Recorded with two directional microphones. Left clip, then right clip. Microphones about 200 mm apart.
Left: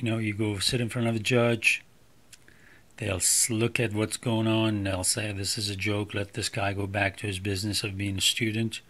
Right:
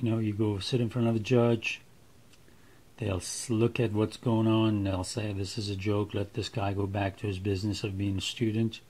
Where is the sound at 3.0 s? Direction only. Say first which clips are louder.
Left 7 dB; 5° left (ahead or behind).